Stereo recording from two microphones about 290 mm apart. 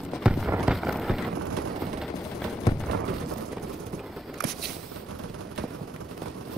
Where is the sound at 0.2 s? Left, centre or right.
Centre.